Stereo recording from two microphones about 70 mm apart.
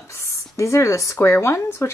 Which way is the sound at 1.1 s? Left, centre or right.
Left.